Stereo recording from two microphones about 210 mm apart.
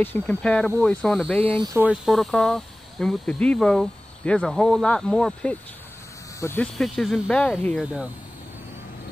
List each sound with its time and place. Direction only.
0.0 s speech: 5° left (ahead or behind)
1.4 s speech: 25° right (ahead or behind)
1.8 s speech: 5° right (ahead or behind)